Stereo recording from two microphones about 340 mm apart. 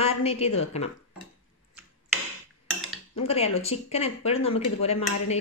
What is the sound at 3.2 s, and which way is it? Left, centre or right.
Speech, centre.